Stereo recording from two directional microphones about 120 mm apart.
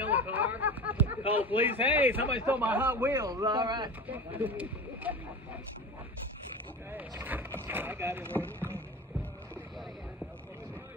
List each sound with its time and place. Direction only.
0.0 s speech: 15° right (ahead or behind)
3.3 s a man's voice: 35° right (ahead or behind)
4.1 s speech: 15° right (ahead or behind)
6.9 s speech: 15° right (ahead or behind)
8.3 s speech: 15° left (ahead or behind)